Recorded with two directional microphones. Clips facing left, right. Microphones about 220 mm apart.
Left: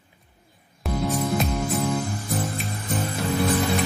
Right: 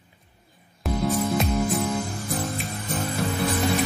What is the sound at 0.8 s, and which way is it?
Music, centre (ahead or behind).